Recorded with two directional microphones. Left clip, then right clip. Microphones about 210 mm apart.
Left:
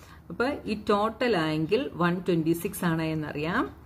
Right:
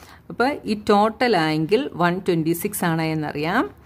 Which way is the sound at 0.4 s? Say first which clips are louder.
Right 7 dB; 45° right (ahead or behind).